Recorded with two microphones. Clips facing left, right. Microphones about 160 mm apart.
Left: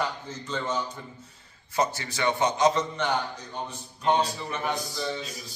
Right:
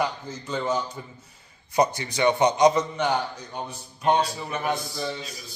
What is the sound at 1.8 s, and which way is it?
A man's voice, 15° right (ahead or behind).